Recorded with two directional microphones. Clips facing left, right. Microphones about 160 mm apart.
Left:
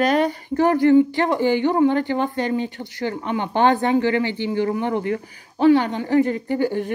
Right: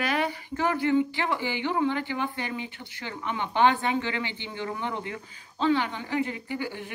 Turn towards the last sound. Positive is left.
turn(degrees=50)  # may be behind; listen again after turning